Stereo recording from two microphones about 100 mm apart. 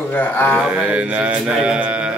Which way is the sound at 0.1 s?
20° left (ahead or behind).